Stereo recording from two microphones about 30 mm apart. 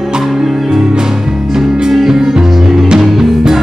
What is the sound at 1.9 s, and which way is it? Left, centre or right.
Music, centre.